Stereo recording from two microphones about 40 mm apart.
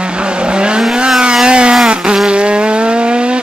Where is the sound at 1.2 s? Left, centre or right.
Right.